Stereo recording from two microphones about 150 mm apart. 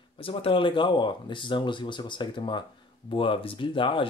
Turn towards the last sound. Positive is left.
turn(degrees=35)  # may be behind; listen again after turning